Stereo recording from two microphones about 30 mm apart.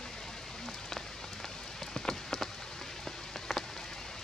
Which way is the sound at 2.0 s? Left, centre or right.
Centre.